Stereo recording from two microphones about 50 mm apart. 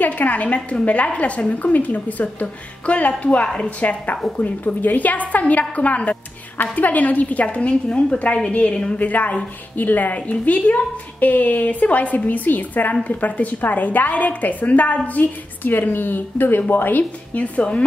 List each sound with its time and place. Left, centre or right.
0.0 s a woman's voice: left